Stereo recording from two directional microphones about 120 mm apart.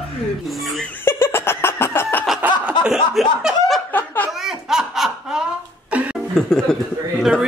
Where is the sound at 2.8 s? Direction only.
5° right (ahead or behind).